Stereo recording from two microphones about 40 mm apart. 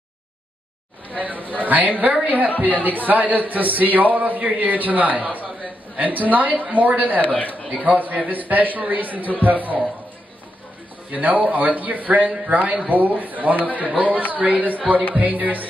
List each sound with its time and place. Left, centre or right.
1.1 s a sound: right
1.6 s a man's voice: right
7.2 s speech: left
7.8 s a man's voice: right
11.1 s a man's voice: right
13.6 s speech: left
13.9 s a woman's voice: right